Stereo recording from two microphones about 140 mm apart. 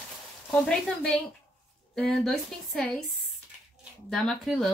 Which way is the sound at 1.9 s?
Centre (ahead or behind).